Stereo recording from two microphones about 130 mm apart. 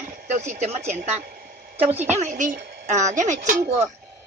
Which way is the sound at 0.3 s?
65° right (ahead or behind).